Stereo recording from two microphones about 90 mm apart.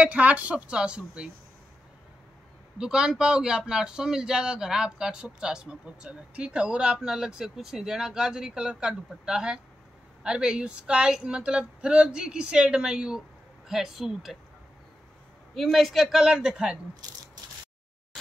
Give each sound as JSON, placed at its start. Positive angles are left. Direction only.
{"t": 0.0, "sound": "a man's voice", "side_deg": -15}
{"t": 2.8, "sound": "a man's voice", "side_deg": -5}
{"t": 15.5, "sound": "a man's voice", "side_deg": 5}